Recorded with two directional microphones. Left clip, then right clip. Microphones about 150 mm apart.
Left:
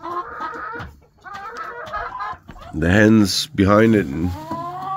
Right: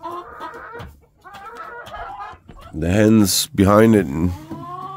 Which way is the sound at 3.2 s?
40° right (ahead or behind).